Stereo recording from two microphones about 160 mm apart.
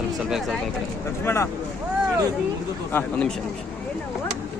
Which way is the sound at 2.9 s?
10° left (ahead or behind).